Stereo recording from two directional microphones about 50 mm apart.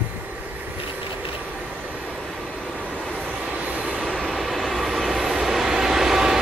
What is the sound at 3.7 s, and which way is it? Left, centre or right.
Train, right.